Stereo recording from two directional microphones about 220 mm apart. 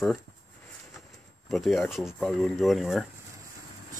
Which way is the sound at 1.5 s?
Centre (ahead or behind).